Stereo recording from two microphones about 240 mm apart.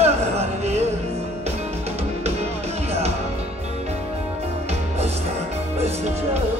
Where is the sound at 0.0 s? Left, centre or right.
Right.